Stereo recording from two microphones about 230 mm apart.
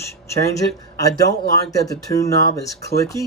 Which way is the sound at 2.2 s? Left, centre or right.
Centre.